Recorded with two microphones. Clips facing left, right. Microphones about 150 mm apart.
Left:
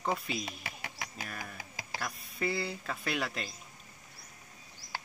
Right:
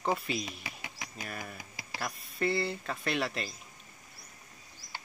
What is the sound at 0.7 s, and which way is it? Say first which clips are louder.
Bird: left 1 dB; 45° left (ahead or behind).